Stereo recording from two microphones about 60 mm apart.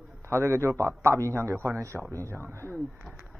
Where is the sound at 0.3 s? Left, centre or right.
Right.